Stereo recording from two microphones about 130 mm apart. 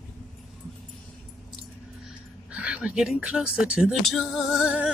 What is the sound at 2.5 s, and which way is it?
Speech, 10° right (ahead or behind).